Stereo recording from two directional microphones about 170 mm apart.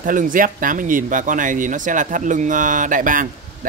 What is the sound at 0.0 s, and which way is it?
Speech, 50° right (ahead or behind).